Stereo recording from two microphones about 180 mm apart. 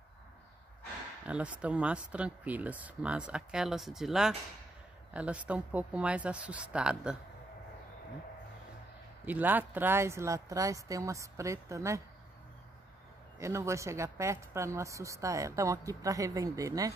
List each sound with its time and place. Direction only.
1.2 s a woman's voice: 5° right (ahead or behind)
9.2 s a woman's voice: 10° right (ahead or behind)
13.4 s a woman's voice: 15° right (ahead or behind)